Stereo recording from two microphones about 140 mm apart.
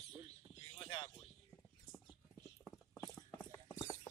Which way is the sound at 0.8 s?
35° left (ahead or behind).